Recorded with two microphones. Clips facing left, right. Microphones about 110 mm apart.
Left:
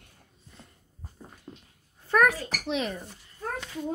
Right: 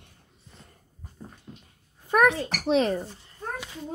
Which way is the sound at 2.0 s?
20° right (ahead or behind).